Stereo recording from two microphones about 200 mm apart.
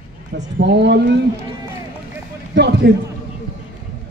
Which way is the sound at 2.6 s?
55° right (ahead or behind).